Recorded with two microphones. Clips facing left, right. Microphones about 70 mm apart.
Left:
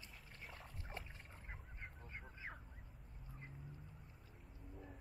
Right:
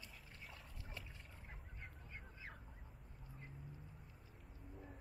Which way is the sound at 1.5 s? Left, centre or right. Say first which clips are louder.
Left 3 dB; left.